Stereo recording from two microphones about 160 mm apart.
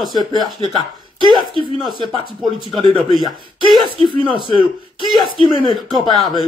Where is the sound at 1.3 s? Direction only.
30° left (ahead or behind).